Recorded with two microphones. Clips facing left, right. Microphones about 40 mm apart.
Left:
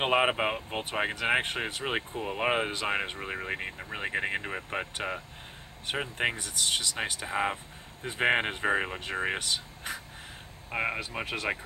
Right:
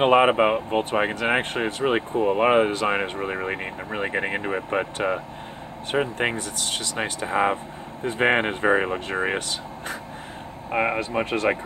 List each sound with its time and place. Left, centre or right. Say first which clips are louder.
0.0 s speech: right 9 dB; centre
1.4 s speech: right 8 dB; centre
5.9 s speech: right 7 dB; centre
7.0 s speech: right 7 dB; centre
10.7 s speech: right 8 dB; right